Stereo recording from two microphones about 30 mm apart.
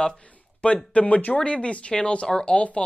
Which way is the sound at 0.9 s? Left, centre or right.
Left.